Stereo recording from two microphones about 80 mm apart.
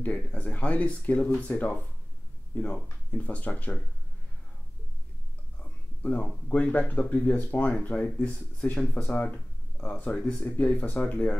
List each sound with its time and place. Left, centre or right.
0.0 s speech: centre
5.6 s speech: centre